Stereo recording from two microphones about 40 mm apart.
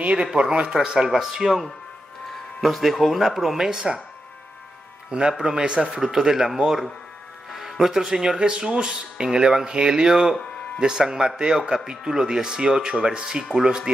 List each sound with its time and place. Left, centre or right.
0.1 s speech: right
2.6 s speech: centre
5.4 s speech: right
7.5 s music: centre
8.0 s speech: centre
8.4 s speech: right